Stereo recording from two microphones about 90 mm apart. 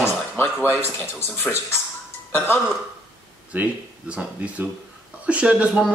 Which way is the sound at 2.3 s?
25° left (ahead or behind).